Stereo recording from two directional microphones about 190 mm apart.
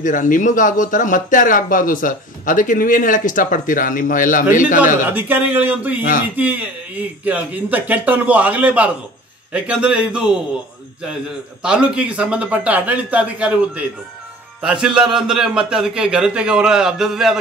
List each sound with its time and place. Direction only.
0.0 s speech: 40° left (ahead or behind)
5.1 s a man's voice: 10° right (ahead or behind)
11.6 s a man's voice: 5° right (ahead or behind)